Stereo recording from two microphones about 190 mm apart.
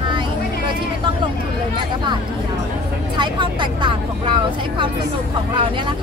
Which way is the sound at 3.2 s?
25° right (ahead or behind).